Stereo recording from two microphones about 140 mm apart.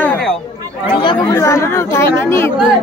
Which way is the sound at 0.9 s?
35° left (ahead or behind).